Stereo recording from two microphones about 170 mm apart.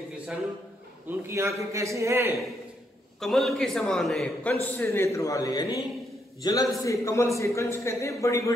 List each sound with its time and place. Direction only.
1.2 s a man's voice: 15° right (ahead or behind)
3.2 s a man's voice: centre (ahead or behind); by 8.5 s 20° left (ahead or behind)